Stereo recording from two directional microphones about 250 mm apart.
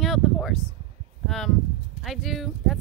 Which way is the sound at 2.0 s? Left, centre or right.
Centre.